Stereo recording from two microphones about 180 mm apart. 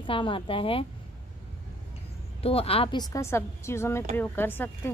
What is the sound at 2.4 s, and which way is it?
A woman's voice, 35° left (ahead or behind).